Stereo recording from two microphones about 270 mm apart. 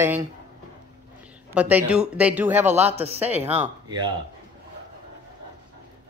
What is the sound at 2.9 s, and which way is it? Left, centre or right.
Speech, right.